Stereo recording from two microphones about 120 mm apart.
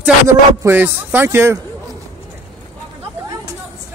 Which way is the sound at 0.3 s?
25° right (ahead or behind).